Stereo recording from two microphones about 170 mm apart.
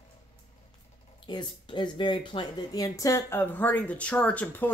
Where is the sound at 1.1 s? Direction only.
25° left (ahead or behind); by 4.7 s 10° left (ahead or behind).